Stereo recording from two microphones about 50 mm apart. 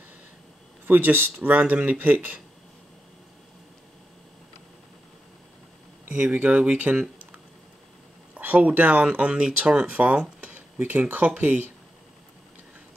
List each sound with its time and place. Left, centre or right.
0.8 s speech: right
6.0 s speech: right
8.4 s speech: right